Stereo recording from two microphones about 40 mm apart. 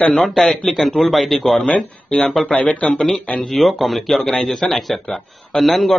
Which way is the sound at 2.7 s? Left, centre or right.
Left.